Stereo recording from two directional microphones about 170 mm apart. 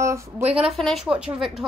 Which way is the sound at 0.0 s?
15° right (ahead or behind).